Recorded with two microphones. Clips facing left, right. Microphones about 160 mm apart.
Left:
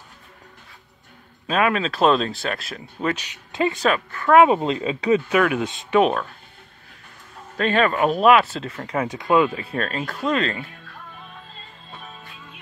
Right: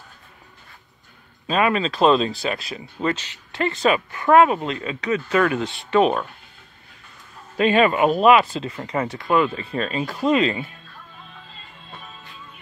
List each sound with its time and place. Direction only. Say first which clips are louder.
1.5 s speech: right 1 dB; centre (ahead or behind)
3.3 s speech: left 2 dB; 15° left (ahead or behind)
3.8 s speech: right 2 dB; 10° right (ahead or behind)
4.5 s speech: left 4 dB; 25° left (ahead or behind)
5.3 s speech: even; 10° left (ahead or behind)
7.5 s speech: right 3 dB; 10° right (ahead or behind)
9.1 s speech: left 2 dB; 15° left (ahead or behind); by 10.6 s 5° right (ahead or behind)